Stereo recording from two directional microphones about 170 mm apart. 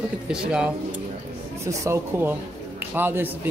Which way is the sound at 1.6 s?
15° right (ahead or behind).